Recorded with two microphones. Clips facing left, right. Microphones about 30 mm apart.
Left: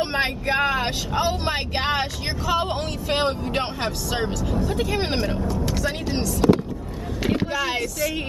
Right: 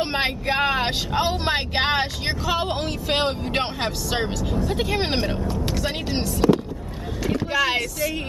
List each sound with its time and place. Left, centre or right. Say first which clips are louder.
0.0 s speech: even; centre
4.7 s speech: even; right